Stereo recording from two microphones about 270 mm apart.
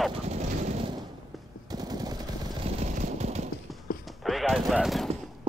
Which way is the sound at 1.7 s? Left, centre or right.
Centre.